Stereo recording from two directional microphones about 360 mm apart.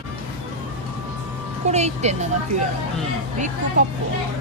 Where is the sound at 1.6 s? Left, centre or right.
Centre.